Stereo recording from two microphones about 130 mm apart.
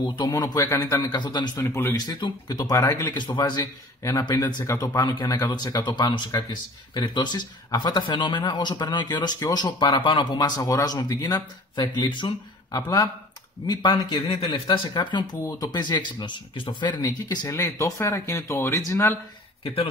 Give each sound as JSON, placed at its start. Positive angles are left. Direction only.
{"t": 0.0, "sound": "speech", "side_deg": 35}
{"t": 1.1, "sound": "speech", "side_deg": 35}
{"t": 1.6, "sound": "speech", "side_deg": 20}
{"t": 2.0, "sound": "speech", "side_deg": 35}
{"t": 13.7, "sound": "speech", "side_deg": 30}
{"t": 19.6, "sound": "speech", "side_deg": 45}